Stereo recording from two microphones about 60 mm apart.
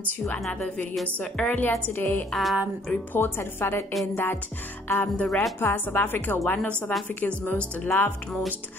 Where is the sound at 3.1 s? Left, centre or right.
Left.